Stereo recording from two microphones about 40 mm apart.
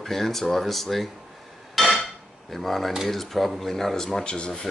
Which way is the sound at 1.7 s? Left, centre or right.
Centre.